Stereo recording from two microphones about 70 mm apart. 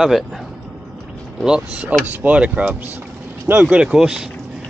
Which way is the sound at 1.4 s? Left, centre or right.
Centre.